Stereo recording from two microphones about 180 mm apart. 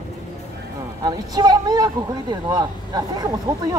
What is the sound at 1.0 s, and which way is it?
Speech, 20° right (ahead or behind).